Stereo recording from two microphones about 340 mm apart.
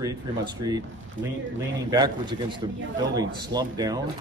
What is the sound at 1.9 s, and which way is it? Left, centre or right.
Speech, centre.